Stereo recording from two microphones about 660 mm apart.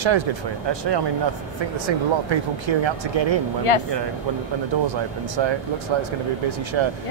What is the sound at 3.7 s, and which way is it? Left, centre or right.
Speech, left.